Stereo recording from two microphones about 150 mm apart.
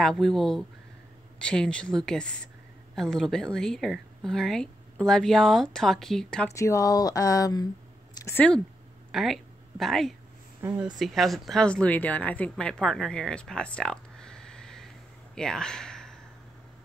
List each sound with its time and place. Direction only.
0.0 s speech: centre (ahead or behind)
6.5 s speech: 20° left (ahead or behind)
8.1 s a sound: 20° left (ahead or behind)
9.1 s a woman's voice: centre (ahead or behind)
10.6 s speech: 15° right (ahead or behind)
11.0 s a woman's voice: centre (ahead or behind)